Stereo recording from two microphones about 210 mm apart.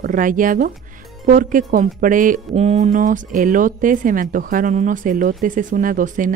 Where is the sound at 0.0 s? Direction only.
40° right (ahead or behind).